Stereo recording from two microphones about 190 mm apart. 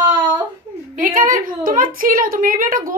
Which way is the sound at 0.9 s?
45° right (ahead or behind).